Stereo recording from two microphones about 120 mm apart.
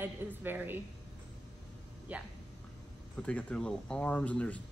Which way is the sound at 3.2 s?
10° left (ahead or behind).